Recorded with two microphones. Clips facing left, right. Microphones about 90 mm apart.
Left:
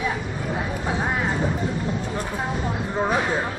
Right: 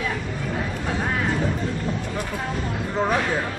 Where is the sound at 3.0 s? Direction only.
15° left (ahead or behind).